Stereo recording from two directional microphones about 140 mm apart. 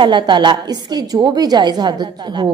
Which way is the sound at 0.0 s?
35° right (ahead or behind).